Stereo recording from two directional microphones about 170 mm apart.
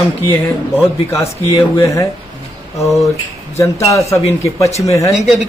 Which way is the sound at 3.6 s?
15° left (ahead or behind).